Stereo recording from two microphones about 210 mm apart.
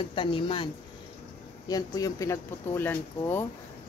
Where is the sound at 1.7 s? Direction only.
20° left (ahead or behind).